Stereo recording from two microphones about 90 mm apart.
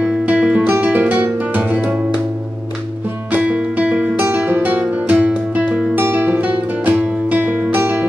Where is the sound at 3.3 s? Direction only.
15° right (ahead or behind).